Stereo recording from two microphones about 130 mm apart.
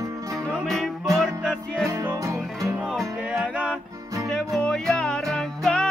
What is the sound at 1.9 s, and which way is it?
Music, 25° right (ahead or behind).